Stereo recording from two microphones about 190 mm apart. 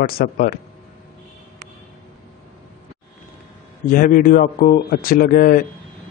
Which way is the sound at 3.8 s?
45° left (ahead or behind).